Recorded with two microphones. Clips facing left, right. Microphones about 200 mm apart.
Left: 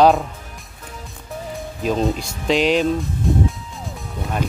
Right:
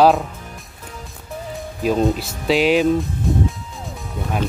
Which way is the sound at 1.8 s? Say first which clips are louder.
Right 2 dB; 5° right (ahead or behind).